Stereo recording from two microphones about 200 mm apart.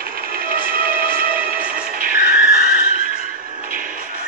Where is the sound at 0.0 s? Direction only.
45° right (ahead or behind).